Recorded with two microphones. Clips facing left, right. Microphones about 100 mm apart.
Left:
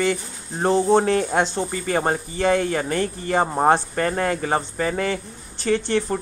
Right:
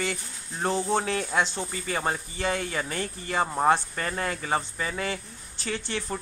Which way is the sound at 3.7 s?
45° left (ahead or behind).